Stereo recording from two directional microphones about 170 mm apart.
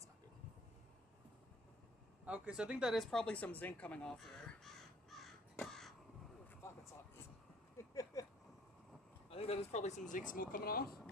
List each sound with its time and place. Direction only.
2.2 s speech: 10° right (ahead or behind)
5.2 s crow: 5° left (ahead or behind)
6.6 s vehicle: 15° left (ahead or behind)
7.7 s a sound: 20° left (ahead or behind)
9.3 s speech: 35° left (ahead or behind); by 11.0 s 60° left (ahead or behind)